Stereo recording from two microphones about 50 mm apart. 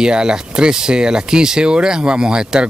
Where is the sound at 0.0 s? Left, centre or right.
Centre.